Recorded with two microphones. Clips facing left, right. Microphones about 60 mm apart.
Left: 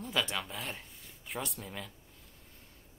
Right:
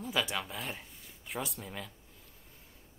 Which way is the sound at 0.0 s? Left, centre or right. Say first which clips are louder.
Even; centre.